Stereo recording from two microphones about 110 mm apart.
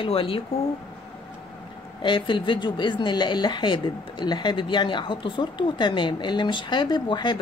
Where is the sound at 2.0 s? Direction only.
45° left (ahead or behind).